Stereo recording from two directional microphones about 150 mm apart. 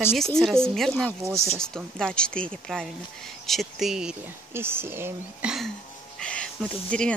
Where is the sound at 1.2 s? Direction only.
20° right (ahead or behind).